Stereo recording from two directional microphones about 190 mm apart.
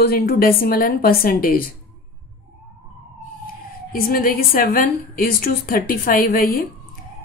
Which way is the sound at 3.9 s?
50° left (ahead or behind).